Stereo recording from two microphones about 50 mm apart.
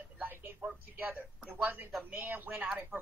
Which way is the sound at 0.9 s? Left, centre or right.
Right.